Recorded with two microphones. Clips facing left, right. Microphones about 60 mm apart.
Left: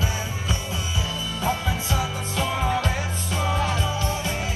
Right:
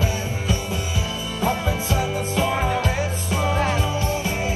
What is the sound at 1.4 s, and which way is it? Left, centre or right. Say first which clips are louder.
Music: right 3 dB; right.